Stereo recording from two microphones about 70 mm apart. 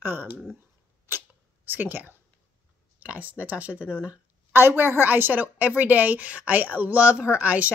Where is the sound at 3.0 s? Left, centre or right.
Right.